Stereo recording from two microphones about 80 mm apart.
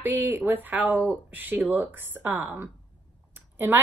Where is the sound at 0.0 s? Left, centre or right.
Right.